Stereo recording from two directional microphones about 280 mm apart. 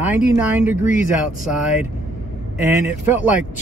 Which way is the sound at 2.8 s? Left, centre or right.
Centre.